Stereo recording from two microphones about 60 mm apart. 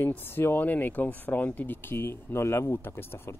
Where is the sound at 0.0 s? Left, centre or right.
Left.